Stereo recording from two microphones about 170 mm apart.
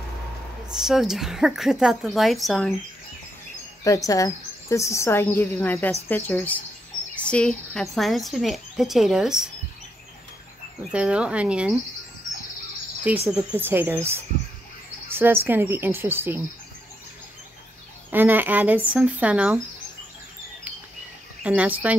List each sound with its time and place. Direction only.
0.7 s speech: 5° right (ahead or behind)
3.8 s a woman's voice: 20° left (ahead or behind); by 9.5 s 5° right (ahead or behind)
10.9 s speech: 5° right (ahead or behind)
13.3 s speech: 10° right (ahead or behind)
18.1 s speech: 10° right (ahead or behind)
21.4 s speech: 10° right (ahead or behind)